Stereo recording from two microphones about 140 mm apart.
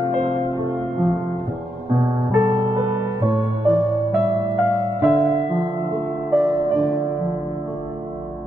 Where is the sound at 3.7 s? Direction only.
Centre (ahead or behind).